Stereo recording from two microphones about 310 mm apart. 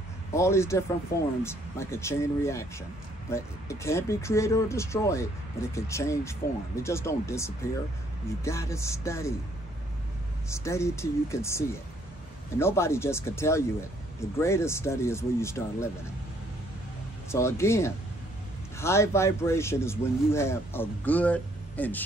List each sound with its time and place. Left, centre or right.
0.3 s a man's voice: centre
10.5 s a man's voice: centre
17.3 s a man's voice: centre